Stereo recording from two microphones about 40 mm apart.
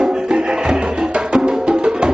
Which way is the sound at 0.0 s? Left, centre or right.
Right.